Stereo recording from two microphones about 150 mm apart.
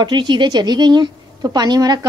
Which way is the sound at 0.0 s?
30° right (ahead or behind).